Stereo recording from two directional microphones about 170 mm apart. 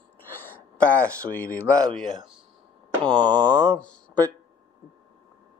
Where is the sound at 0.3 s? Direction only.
10° left (ahead or behind).